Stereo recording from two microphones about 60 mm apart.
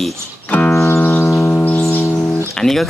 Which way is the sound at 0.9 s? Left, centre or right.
Left.